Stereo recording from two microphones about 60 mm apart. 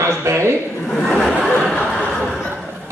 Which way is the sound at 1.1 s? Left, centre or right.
Centre.